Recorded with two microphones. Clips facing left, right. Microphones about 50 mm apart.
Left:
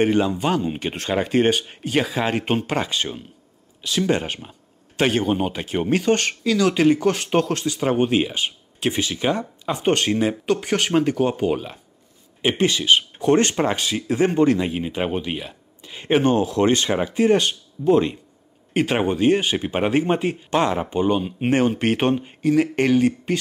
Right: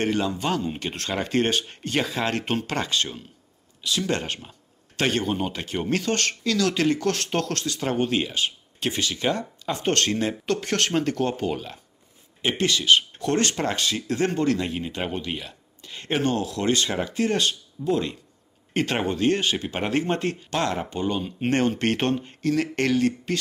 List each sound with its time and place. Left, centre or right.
0.0 s speech: centre
3.8 s speech: left
4.1 s speech: centre
18.7 s speech: centre